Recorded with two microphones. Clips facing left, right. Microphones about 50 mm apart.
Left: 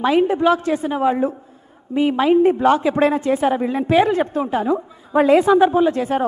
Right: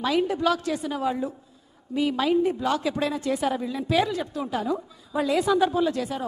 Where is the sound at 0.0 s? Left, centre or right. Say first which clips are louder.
Left 8 dB; left.